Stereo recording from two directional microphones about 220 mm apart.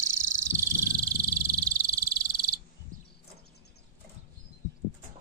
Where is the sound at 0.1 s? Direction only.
15° right (ahead or behind).